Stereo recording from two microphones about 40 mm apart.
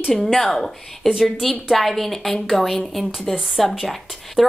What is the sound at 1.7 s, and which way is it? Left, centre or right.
A woman's voice, centre.